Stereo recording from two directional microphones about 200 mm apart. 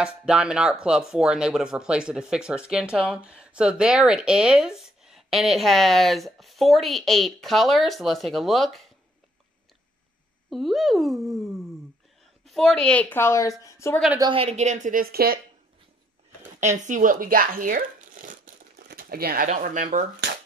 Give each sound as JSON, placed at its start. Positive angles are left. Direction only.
{"t": 0.0, "sound": "speech", "side_deg": -5}
{"t": 10.5, "sound": "a woman's voice", "side_deg": 0}
{"t": 14.1, "sound": "speech", "side_deg": -25}
{"t": 16.5, "sound": "speech", "side_deg": -40}